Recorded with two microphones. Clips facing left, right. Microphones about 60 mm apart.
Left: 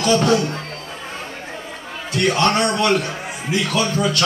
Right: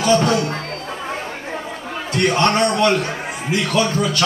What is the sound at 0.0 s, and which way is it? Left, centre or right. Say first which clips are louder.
Speech: even; centre.